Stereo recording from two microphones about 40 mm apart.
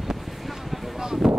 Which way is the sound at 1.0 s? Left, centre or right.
Centre.